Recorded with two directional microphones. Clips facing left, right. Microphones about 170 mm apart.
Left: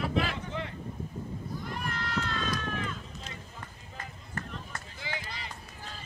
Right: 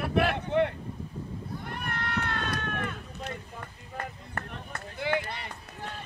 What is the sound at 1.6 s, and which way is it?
Run, 60° right (ahead or behind).